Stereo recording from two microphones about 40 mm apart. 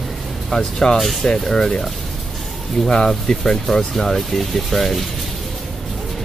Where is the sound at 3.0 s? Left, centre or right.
Centre.